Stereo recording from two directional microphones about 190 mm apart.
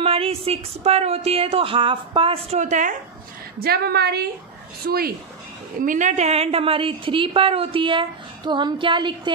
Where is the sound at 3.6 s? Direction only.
55° right (ahead or behind).